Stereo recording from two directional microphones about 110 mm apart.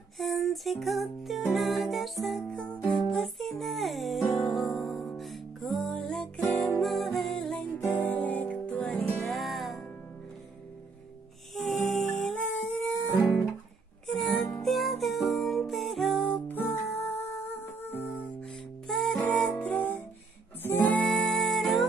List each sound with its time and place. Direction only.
0.2 s music: centre (ahead or behind)
11.5 s music: centre (ahead or behind)
12.2 s humming: centre (ahead or behind)
14.0 s music: 5° left (ahead or behind)
16.3 s music: 15° left (ahead or behind)
18.9 s music: 5° left (ahead or behind)